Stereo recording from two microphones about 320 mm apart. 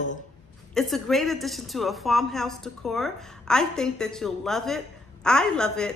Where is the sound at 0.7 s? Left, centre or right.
Centre.